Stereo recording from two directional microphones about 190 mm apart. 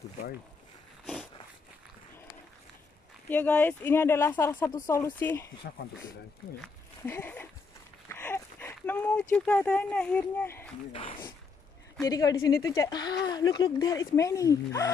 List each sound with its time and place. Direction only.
3.3 s speech: 10° left (ahead or behind)
7.1 s speech: 10° left (ahead or behind)
8.1 s a sound: 10° left (ahead or behind)
9.3 s speech: 5° left (ahead or behind)
10.9 s speech: 30° left (ahead or behind)